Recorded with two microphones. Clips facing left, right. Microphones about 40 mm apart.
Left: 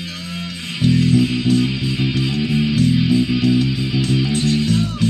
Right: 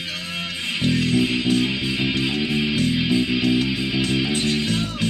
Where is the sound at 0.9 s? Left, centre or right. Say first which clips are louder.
Left 4 dB; centre.